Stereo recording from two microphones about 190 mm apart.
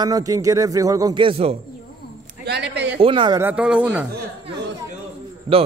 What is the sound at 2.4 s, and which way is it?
Speech, 60° right (ahead or behind).